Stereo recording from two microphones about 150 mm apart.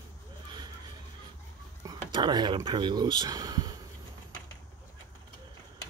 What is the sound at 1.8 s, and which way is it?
Speech, 30° right (ahead or behind).